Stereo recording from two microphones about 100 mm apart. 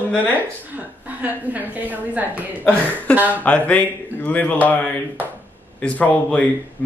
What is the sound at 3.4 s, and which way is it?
Speech, 15° left (ahead or behind).